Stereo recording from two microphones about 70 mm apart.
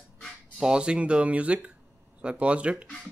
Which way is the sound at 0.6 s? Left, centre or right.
Centre.